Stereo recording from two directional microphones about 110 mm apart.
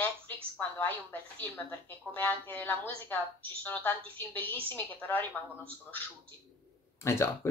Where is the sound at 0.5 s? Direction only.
20° left (ahead or behind).